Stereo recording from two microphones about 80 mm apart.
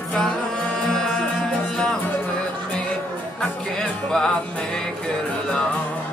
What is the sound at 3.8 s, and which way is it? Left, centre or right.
Music, centre.